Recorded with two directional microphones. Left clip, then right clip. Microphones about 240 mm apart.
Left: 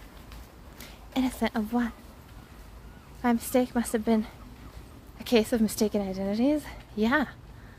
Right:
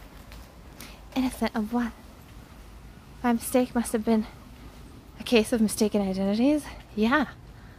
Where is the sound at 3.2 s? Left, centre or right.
Centre.